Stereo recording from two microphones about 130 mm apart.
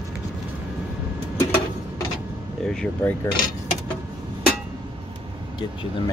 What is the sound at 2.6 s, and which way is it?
Speech, 5° left (ahead or behind).